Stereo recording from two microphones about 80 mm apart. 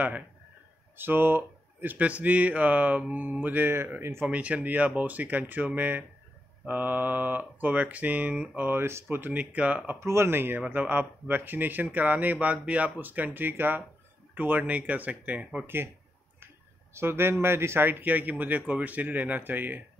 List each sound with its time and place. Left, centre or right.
0.9 s speech: right
4.3 s speech: centre
9.9 s speech: right
16.9 s speech: right